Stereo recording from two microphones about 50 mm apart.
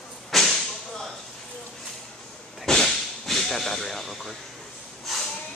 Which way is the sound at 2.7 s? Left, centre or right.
Centre.